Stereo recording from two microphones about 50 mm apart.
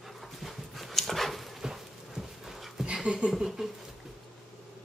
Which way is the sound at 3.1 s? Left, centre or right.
Right.